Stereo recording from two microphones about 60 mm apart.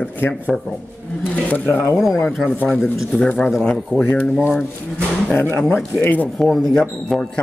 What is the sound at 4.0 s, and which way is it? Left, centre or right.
Speech, left.